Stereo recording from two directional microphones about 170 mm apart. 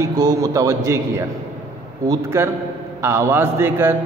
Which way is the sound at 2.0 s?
20° right (ahead or behind).